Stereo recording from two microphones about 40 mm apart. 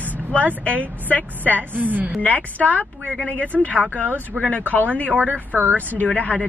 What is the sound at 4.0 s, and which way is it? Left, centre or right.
Speech, right.